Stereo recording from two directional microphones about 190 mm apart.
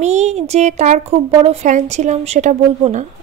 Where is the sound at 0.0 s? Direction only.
35° right (ahead or behind).